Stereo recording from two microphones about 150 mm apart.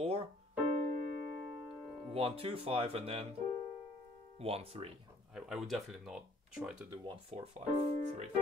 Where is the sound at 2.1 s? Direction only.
40° right (ahead or behind).